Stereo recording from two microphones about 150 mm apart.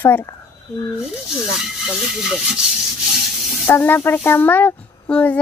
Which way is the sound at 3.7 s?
10° left (ahead or behind).